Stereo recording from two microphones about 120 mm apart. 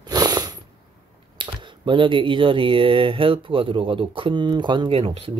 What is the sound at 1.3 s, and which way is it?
Speech, 45° right (ahead or behind).